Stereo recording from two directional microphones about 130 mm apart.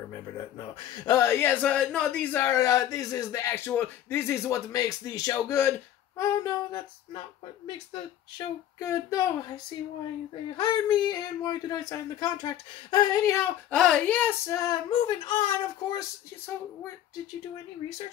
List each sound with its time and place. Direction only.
0.9 s speech: 30° left (ahead or behind)
8.7 s speech: 25° left (ahead or behind)
10.5 s speech: 35° left (ahead or behind)
13.7 s speech: 10° left (ahead or behind)
14.4 s speech: 25° left (ahead or behind); by 16.0 s 40° left (ahead or behind)